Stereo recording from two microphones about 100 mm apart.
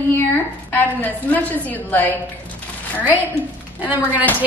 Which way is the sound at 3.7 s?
15° right (ahead or behind).